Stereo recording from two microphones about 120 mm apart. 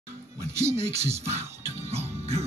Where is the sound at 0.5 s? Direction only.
25° right (ahead or behind).